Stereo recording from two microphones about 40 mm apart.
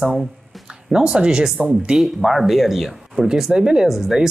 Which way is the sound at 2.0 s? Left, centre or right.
Centre.